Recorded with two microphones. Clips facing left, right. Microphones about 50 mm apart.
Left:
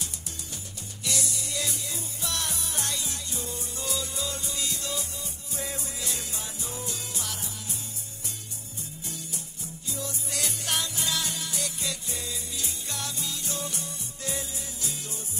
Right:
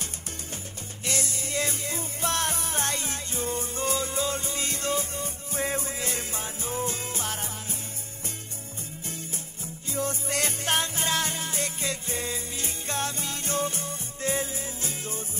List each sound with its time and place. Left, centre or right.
1.0 s music: right
9.0 s music: right